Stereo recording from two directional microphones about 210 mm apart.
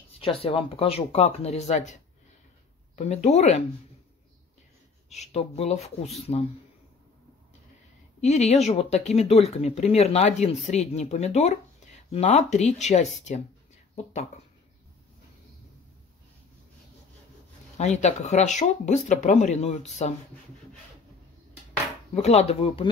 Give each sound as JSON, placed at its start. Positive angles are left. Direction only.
{"t": 0.2, "sound": "speech", "side_deg": 25}
{"t": 3.0, "sound": "speech", "side_deg": 30}
{"t": 5.1, "sound": "speech", "side_deg": 30}
{"t": 8.2, "sound": "speech", "side_deg": 30}
{"t": 17.7, "sound": "speech", "side_deg": 35}
{"t": 22.1, "sound": "speech", "side_deg": 30}